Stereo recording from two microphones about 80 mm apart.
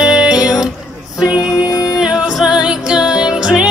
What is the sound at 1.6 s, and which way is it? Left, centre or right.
Music, left.